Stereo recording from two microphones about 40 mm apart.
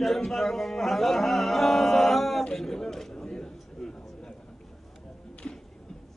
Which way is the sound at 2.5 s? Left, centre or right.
Centre.